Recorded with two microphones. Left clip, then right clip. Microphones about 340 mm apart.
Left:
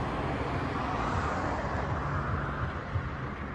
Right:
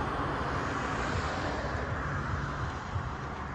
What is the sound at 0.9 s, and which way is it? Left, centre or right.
Vehicle, centre.